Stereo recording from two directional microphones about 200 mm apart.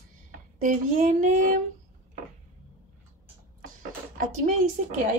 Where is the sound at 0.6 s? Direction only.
40° right (ahead or behind).